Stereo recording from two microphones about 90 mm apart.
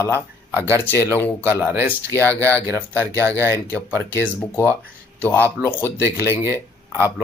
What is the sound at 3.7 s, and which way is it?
Speech, 20° left (ahead or behind).